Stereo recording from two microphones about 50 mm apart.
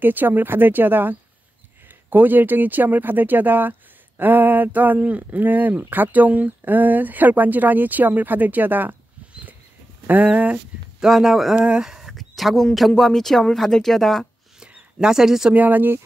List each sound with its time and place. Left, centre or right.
0.0 s speech: right
10.2 s speech: right
11.0 s a man's voice: centre
11.5 s speech: right
11.8 s a sound: centre
12.2 s a sound: centre
12.7 s speech: centre
14.6 s a sound: centre
15.5 s speech: right